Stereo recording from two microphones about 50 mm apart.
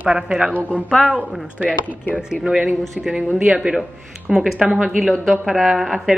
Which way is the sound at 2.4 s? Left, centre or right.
Centre.